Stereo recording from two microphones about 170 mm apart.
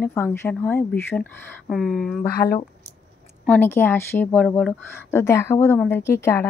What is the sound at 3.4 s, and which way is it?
A woman's voice, 10° left (ahead or behind).